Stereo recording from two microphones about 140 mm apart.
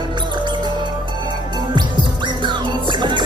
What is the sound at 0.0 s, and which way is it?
Music, 30° right (ahead or behind).